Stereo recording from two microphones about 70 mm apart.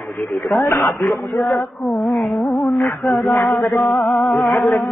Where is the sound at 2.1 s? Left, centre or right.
Centre.